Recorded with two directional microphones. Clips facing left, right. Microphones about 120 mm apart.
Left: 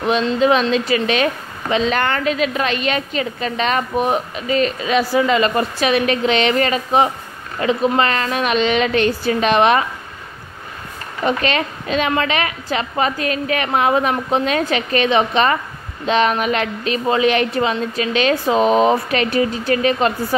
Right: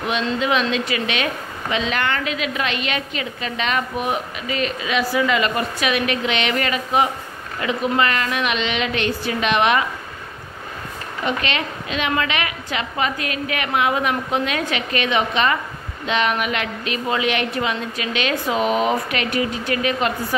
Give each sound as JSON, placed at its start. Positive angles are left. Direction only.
{"t": 0.1, "sound": "a woman's voice", "side_deg": 35}
{"t": 11.2, "sound": "a woman's voice", "side_deg": 40}